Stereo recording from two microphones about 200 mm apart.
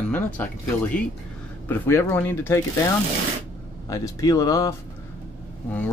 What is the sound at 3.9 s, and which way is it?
Speech, 15° left (ahead or behind).